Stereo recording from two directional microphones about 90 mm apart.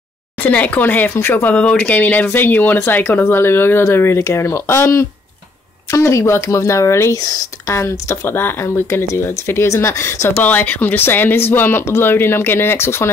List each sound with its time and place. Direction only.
0.4 s speech: 20° left (ahead or behind); by 7.4 s 45° left (ahead or behind)
7.6 s speech: 30° left (ahead or behind)
10.4 s speech: 20° left (ahead or behind)